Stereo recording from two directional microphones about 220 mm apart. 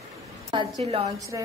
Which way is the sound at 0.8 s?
25° right (ahead or behind).